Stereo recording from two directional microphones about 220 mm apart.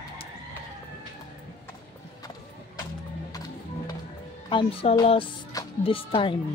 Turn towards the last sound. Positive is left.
turn(degrees=25)  # may be behind; listen again after turning